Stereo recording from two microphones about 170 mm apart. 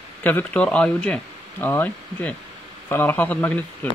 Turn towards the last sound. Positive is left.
turn(degrees=10)  # may be behind; listen again after turning